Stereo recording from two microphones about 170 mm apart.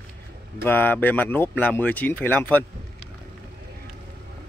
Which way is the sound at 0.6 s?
10° left (ahead or behind).